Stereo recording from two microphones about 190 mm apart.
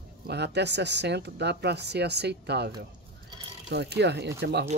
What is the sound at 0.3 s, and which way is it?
Speech, 60° right (ahead or behind).